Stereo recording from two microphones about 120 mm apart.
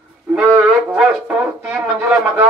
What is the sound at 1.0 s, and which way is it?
Speech, 10° right (ahead or behind).